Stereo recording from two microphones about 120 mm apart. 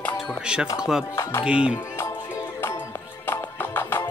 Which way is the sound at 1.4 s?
10° right (ahead or behind).